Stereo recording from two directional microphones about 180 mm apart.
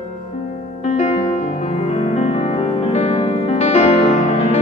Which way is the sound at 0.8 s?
35° left (ahead or behind).